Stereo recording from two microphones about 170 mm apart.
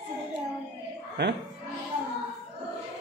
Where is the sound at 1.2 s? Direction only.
90° right.